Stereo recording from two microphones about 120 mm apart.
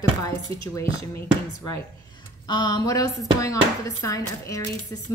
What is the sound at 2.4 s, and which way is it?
A woman's voice, 35° left (ahead or behind).